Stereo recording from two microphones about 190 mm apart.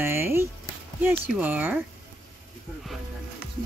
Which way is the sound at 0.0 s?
10° right (ahead or behind).